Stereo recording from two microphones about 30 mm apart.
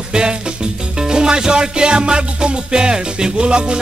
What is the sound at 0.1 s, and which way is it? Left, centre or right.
Music, right.